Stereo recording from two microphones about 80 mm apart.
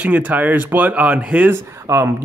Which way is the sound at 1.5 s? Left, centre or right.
Right.